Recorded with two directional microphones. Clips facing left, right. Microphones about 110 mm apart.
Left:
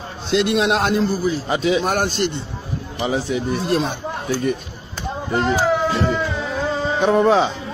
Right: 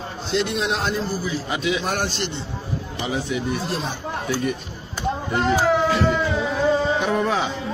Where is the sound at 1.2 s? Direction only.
40° left (ahead or behind).